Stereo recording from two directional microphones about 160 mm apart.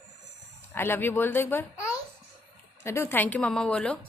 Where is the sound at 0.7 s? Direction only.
10° left (ahead or behind).